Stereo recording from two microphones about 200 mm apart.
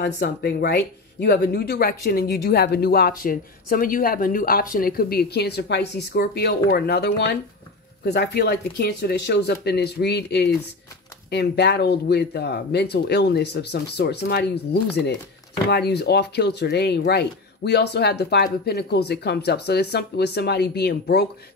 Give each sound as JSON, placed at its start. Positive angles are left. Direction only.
{"t": 0.0, "sound": "speech", "side_deg": 55}